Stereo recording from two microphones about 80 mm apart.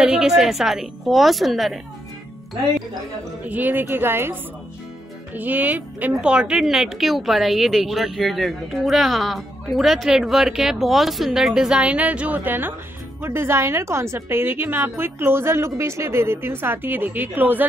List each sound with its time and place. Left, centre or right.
0.0 s a woman's voice: centre
3.4 s a woman's voice: right